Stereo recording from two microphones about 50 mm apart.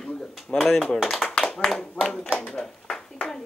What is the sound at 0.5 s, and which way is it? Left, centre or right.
Speech, centre.